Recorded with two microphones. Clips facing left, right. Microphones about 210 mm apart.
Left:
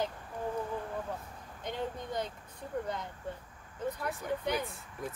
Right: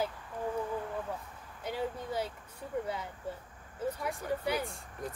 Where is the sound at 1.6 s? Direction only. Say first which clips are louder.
Right 1 dB; 5° right (ahead or behind).